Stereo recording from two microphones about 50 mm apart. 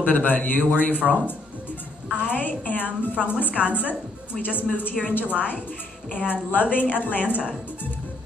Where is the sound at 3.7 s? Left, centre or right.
Left.